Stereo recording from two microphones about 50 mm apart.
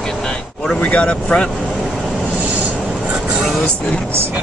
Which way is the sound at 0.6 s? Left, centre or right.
Left.